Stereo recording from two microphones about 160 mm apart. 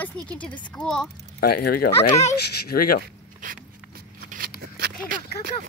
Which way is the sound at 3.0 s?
60° right (ahead or behind).